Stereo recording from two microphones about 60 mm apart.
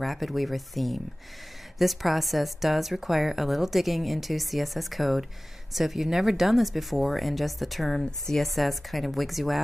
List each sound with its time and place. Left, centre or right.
0.0 s a woman's voice: centre